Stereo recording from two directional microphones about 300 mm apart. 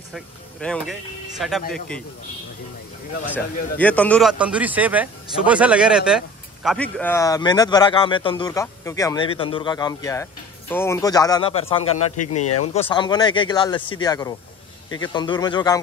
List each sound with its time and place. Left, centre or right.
0.1 s a man's voice: centre
3.7 s a man's voice: centre
12.2 s speech: left
12.8 s a man's voice: centre